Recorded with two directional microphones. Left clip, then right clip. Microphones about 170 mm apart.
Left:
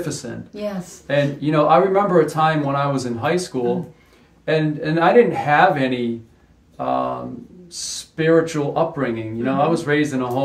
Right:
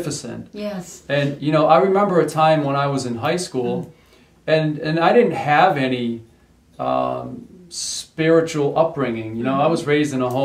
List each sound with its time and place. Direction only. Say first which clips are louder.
0.0 s speech: even; 20° right (ahead or behind)